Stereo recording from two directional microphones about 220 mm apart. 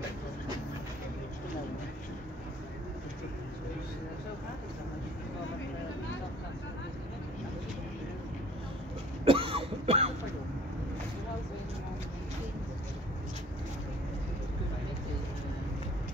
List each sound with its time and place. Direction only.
9.2 s cough: 25° right (ahead or behind)